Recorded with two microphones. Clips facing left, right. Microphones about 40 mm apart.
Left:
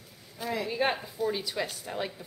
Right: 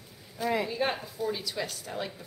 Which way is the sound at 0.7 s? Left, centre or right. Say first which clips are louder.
Left 2 dB; centre.